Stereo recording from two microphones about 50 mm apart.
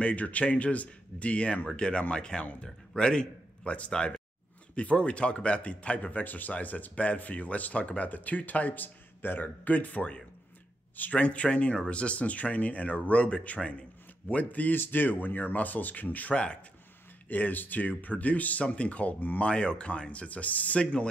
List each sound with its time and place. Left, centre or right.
0.0 s speech: left
17.3 s speech: left
19.5 s speech: left